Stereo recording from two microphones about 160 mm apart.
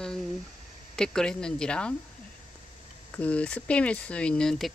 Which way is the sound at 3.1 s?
10° left (ahead or behind).